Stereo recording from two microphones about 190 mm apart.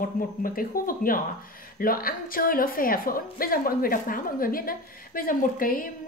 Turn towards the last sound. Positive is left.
turn(degrees=50)  # may be behind; listen again after turning